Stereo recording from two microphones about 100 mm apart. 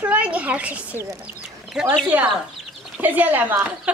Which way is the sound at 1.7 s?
5° right (ahead or behind).